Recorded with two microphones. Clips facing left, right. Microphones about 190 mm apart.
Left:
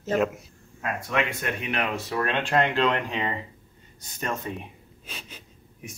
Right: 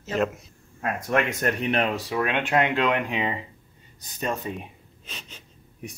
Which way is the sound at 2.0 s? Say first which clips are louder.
Right 1 dB; 10° right (ahead or behind).